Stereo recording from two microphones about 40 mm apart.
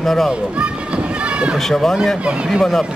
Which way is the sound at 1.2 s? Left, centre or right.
Right.